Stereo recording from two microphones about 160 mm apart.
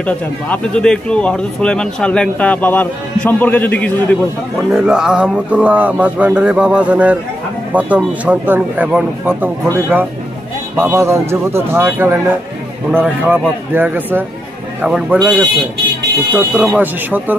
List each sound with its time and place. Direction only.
0.0 s speech: 10° left (ahead or behind)
4.6 s speech: 5° right (ahead or behind)